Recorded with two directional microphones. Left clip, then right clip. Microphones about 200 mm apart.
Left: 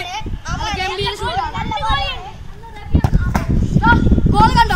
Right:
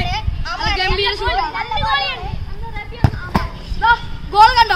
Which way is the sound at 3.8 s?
10° right (ahead or behind).